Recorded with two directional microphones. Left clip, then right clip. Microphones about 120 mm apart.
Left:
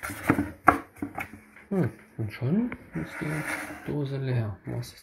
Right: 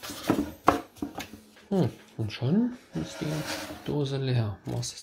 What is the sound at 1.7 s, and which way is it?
Speech, 25° right (ahead or behind).